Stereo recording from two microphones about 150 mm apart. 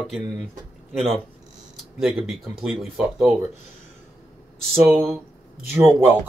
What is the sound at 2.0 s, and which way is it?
Speech, 5° right (ahead or behind).